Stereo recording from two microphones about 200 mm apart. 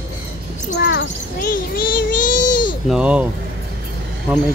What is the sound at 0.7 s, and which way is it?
Child singing, 65° left (ahead or behind).